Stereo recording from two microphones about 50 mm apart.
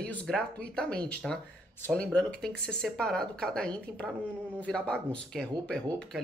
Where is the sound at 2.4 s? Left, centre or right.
Centre.